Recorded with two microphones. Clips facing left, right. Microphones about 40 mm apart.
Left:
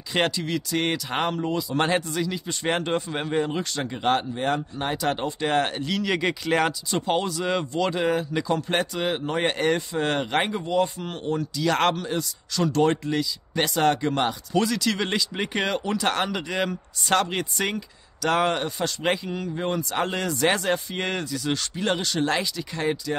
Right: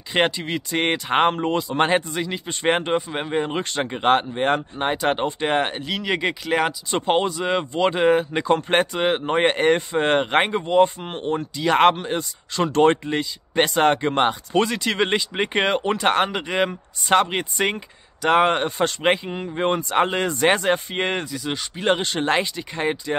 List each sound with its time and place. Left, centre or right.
0.1 s speech: right
1.8 s speech: right
3.4 s speech: right; by 6.7 s centre
6.9 s speech: right
21.3 s speech: centre
21.8 s speech: right